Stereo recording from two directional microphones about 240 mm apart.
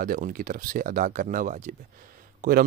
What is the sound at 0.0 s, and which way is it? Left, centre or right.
A man's voice, right.